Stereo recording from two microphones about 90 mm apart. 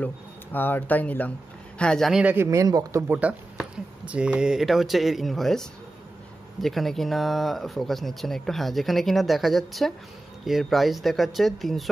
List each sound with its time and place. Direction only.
0.0 s speech: 20° left (ahead or behind)
2.2 s speech: 30° right (ahead or behind)
3.0 s speech: 20° right (ahead or behind); by 11.9 s centre (ahead or behind)